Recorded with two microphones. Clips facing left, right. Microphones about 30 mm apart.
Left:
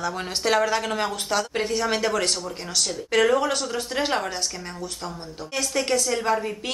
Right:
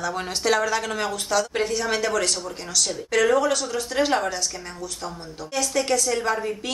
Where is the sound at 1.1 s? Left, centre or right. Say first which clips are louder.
Right 2 dB; left.